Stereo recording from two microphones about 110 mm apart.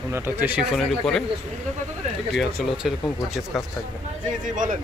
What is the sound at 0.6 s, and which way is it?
Speech, 5° left (ahead or behind).